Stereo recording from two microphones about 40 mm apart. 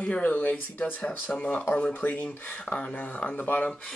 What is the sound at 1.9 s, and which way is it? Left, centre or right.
Speech, left.